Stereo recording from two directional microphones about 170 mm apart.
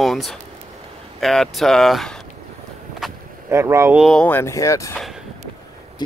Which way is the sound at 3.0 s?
Centre (ahead or behind).